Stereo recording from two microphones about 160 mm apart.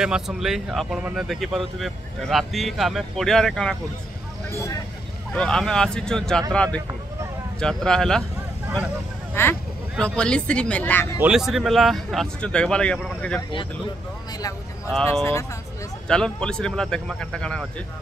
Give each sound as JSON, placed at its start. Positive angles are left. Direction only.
{"t": 0.0, "sound": "speech", "side_deg": -5}
{"t": 4.6, "sound": "speech", "side_deg": 20}
{"t": 5.3, "sound": "speech", "side_deg": 5}
{"t": 9.3, "sound": "speech", "side_deg": 15}
{"t": 11.1, "sound": "speech", "side_deg": -5}
{"t": 16.1, "sound": "speech", "side_deg": 5}